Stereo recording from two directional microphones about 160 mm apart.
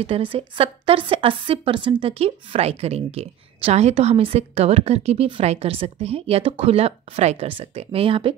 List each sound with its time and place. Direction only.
0.0 s a woman's voice: 35° right (ahead or behind)